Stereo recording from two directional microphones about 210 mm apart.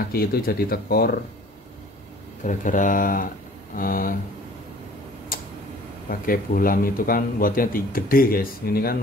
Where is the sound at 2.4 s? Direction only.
40° left (ahead or behind).